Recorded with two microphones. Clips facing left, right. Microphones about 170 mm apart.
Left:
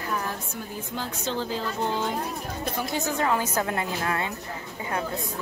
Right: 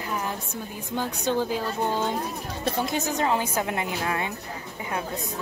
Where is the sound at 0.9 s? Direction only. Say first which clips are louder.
Right 5 dB; 15° right (ahead or behind).